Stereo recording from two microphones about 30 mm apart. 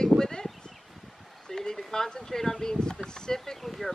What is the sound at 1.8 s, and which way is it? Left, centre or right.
Speech, centre.